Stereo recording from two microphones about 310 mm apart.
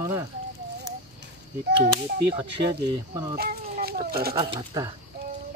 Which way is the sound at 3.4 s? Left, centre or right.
Right.